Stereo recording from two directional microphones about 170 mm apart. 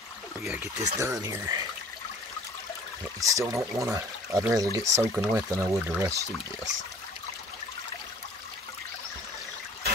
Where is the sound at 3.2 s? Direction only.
20° right (ahead or behind).